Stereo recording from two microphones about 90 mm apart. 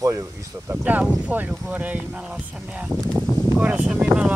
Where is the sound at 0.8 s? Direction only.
15° right (ahead or behind).